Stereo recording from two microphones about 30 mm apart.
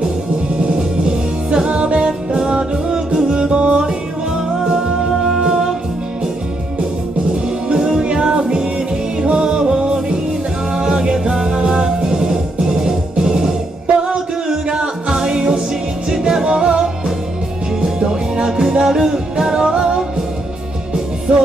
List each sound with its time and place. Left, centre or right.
0.6 s music: right
2.0 s music: right
3.5 s music: right
3.8 s music: right
7.6 s music: right
21.3 s music: right